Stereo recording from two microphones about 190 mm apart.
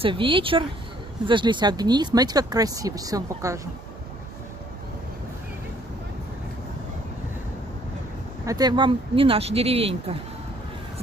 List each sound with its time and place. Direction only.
0.0 s speech: 30° right (ahead or behind)
8.5 s speech: 20° right (ahead or behind)